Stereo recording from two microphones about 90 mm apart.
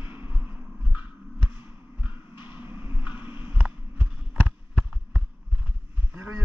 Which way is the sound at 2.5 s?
25° right (ahead or behind).